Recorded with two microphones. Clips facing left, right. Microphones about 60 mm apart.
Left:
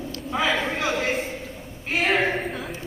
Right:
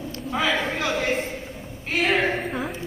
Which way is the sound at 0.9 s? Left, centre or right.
Centre.